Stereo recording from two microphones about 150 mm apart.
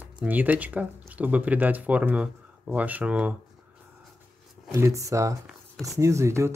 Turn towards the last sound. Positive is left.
turn(degrees=-20)  # may be behind; listen again after turning